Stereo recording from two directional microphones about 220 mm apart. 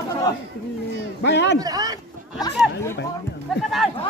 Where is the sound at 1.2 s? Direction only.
50° left (ahead or behind).